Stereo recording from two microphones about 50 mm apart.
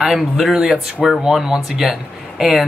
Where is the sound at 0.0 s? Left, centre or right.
Centre.